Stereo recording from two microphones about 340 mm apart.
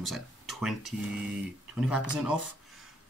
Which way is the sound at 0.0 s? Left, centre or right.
Centre.